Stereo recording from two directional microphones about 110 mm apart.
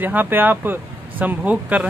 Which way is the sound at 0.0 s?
15° right (ahead or behind).